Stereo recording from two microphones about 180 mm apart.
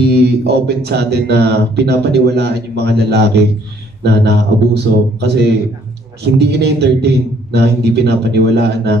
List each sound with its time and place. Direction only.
0.1 s speech: 65° right (ahead or behind)